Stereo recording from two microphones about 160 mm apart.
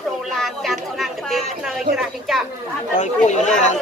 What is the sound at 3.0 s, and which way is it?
Speech, 50° left (ahead or behind).